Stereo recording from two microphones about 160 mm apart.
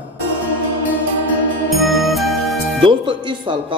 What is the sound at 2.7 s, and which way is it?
Speech, 30° right (ahead or behind).